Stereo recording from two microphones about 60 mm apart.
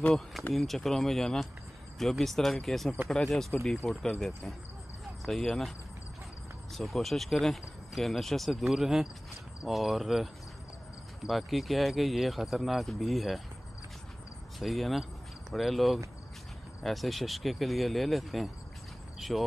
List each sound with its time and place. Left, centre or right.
0.5 s speech: centre
6.7 s speech: centre
14.6 s speech: centre